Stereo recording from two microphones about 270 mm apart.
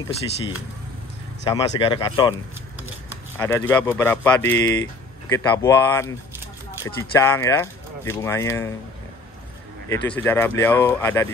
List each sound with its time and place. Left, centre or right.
1.5 s speech: centre
3.3 s speech: centre
9.8 s speech: centre